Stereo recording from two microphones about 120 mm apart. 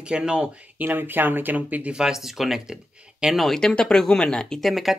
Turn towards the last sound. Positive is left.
turn(degrees=0)  # may be behind; listen again after turning